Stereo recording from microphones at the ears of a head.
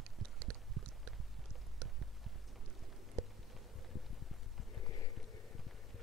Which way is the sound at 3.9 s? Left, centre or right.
Left.